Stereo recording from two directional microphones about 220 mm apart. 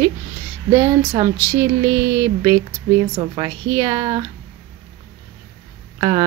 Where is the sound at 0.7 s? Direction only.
15° right (ahead or behind).